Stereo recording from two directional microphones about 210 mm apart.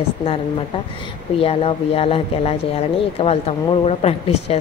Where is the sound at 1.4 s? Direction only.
30° left (ahead or behind).